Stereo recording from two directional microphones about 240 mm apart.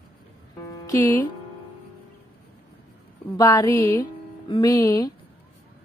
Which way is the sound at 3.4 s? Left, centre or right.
Centre.